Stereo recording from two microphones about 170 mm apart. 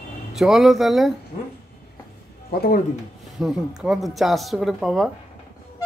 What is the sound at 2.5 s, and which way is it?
Speech, 65° left (ahead or behind).